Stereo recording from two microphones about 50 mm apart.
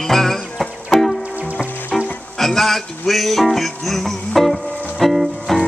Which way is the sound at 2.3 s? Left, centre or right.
Centre.